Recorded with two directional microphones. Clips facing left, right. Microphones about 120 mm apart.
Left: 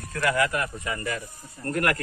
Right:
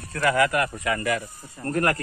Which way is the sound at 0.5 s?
65° right (ahead or behind).